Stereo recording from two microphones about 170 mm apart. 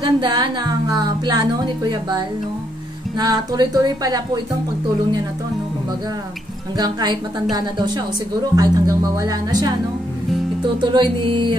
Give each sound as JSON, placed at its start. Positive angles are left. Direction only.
{"t": 0.0, "sound": "speech", "side_deg": -25}
{"t": 6.8, "sound": "speech", "side_deg": -25}
{"t": 10.8, "sound": "speech", "side_deg": -30}